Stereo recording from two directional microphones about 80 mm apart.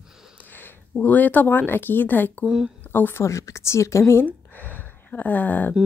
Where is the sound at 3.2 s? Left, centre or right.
Left.